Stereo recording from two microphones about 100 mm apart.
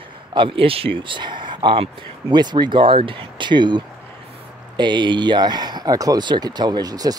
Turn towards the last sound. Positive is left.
turn(degrees=-40)  # may be behind; listen again after turning